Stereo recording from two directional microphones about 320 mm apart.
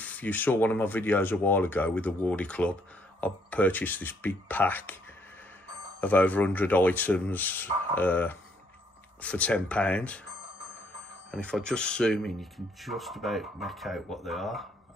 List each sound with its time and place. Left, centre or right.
0.0 s speech: centre
5.9 s speech: centre
11.3 s speech: centre